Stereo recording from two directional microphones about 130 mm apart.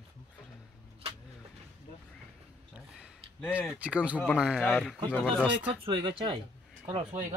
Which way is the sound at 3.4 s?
10° right (ahead or behind).